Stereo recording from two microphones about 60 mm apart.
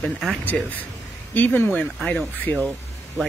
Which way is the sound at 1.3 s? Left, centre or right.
Left.